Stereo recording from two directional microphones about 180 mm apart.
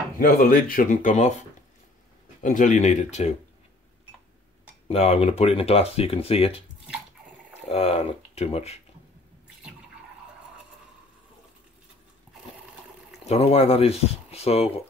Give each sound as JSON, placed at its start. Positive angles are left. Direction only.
{"t": 0.2, "sound": "speech", "side_deg": 50}
{"t": 2.4, "sound": "speech", "side_deg": 45}
{"t": 4.8, "sound": "speech", "side_deg": 35}
{"t": 7.6, "sound": "speech", "side_deg": 35}
{"t": 13.2, "sound": "speech", "side_deg": 35}